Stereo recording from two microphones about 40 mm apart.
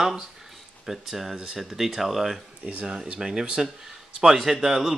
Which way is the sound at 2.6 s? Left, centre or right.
Right.